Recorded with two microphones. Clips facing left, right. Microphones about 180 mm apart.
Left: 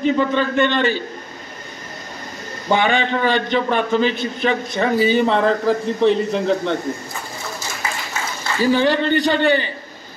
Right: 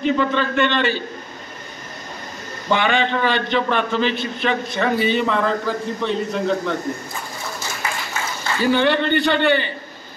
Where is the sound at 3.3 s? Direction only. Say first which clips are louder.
Left 2 dB; 45° left (ahead or behind).